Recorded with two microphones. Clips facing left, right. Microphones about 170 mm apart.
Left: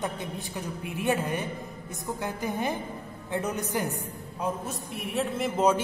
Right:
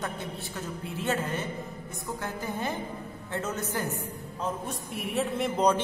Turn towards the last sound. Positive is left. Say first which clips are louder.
# left 1 dB
turn(degrees=5)  # may be behind; listen again after turning